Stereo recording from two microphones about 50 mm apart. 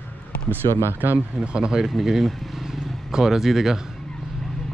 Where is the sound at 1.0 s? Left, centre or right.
Right.